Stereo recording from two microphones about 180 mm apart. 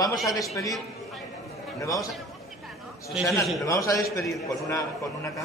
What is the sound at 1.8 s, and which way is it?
Speech, 20° left (ahead or behind).